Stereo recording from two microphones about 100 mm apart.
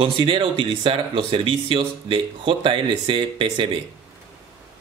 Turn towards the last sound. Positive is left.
turn(degrees=-55)  # may be behind; listen again after turning